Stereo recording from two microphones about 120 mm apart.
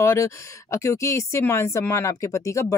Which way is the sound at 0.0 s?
25° left (ahead or behind).